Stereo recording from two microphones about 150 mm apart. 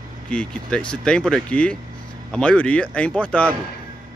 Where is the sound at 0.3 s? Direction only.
5° left (ahead or behind).